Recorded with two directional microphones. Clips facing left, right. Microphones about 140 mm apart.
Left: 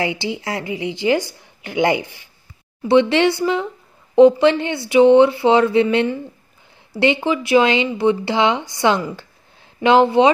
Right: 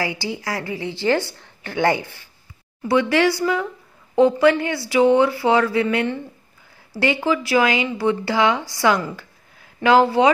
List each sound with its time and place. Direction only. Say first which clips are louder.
0.0 s speech: left 3 dB; 20° left (ahead or behind)